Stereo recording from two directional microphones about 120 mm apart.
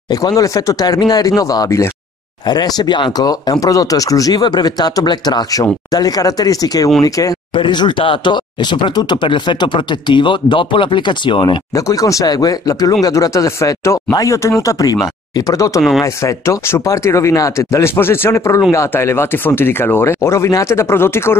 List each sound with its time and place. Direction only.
0.1 s speech: 30° left (ahead or behind)
7.6 s speech: 40° left (ahead or behind)
11.7 s speech: 30° left (ahead or behind)